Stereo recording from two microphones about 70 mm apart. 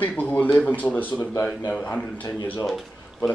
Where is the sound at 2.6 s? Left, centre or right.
Centre.